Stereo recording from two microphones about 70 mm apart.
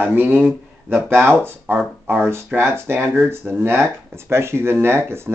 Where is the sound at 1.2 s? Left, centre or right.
Right.